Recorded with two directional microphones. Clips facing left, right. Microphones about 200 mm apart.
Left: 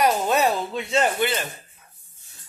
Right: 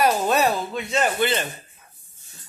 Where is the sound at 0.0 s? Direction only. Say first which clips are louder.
Even; 20° left (ahead or behind).